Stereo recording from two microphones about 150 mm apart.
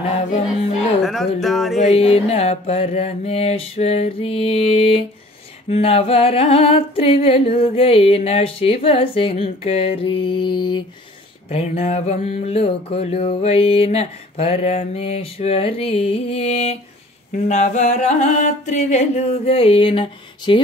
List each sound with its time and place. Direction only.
1.0 s speech: centre (ahead or behind)
1.8 s mantra: 45° left (ahead or behind)
11.4 s mantra: 45° left (ahead or behind)